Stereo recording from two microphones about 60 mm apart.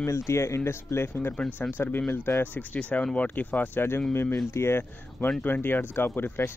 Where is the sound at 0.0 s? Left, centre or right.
Left.